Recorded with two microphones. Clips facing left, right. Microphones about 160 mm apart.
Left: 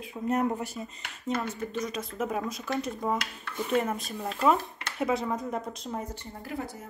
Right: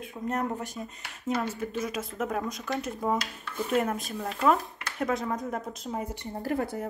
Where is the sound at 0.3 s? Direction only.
10° left (ahead or behind).